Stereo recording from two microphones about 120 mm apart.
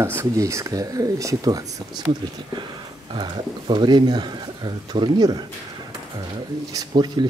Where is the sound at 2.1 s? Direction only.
45° right (ahead or behind).